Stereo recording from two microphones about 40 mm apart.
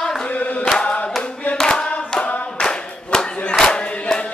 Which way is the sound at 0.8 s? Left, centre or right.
Left.